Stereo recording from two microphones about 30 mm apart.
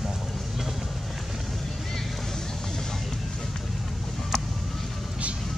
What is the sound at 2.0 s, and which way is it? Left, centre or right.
Boat, centre.